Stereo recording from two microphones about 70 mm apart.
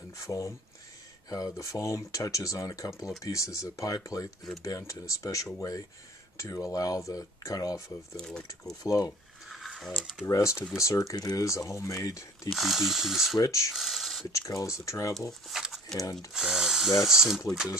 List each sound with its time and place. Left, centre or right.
0.1 s speech: left
8.2 s speech: centre
8.8 s speech: left
9.5 s a sound: centre
10.2 s speech: left
12.4 s speech: centre
13.4 s speech: left
13.7 s speech: centre
14.3 s speech: left
15.4 s speech: centre
16.0 s speech: left
16.3 s speech: centre